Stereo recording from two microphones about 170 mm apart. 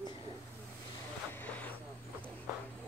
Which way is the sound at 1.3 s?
10° left (ahead or behind).